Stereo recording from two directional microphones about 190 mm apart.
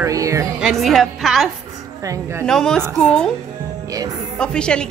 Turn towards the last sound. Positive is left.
turn(degrees=5)  # may be behind; listen again after turning